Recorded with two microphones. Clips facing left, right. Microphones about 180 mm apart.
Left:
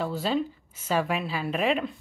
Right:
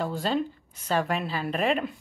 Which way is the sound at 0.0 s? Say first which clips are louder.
Even; 5° left (ahead or behind).